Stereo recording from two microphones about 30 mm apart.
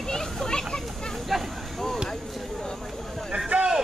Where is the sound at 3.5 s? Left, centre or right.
Right.